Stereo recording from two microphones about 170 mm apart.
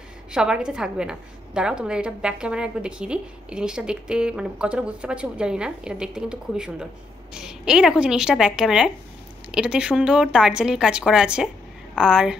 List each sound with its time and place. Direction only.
0.3 s a woman's voice: 5° right (ahead or behind)